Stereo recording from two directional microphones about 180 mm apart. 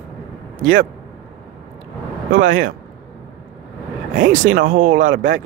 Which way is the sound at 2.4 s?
90° right.